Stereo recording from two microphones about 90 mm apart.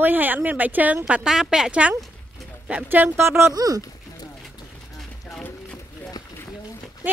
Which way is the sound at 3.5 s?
40° right (ahead or behind).